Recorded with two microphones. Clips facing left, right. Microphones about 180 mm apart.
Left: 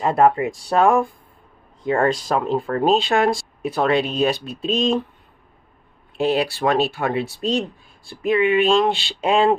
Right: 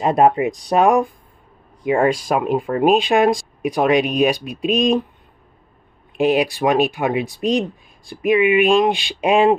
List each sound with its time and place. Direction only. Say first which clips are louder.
0.0 s speech: right 2 dB; 20° right (ahead or behind)
6.1 s speech: right 3 dB; 15° right (ahead or behind)